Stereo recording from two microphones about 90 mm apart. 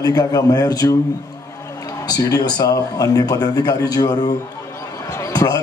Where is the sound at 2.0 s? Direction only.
45° left (ahead or behind).